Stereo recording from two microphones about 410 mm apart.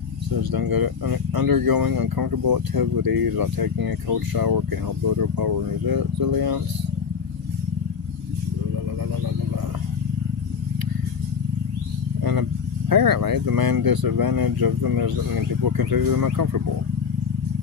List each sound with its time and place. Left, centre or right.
0.4 s speech: right
12.9 s speech: right